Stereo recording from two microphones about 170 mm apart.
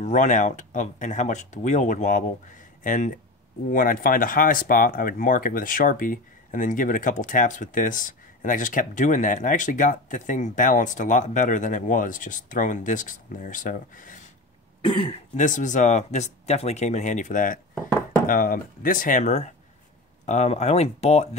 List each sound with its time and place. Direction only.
0.0 s speech: 45° left (ahead or behind)
14.8 s speech: 30° left (ahead or behind)
15.3 s speech: 50° left (ahead or behind)